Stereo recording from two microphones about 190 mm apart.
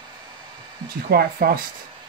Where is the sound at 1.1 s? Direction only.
55° right (ahead or behind).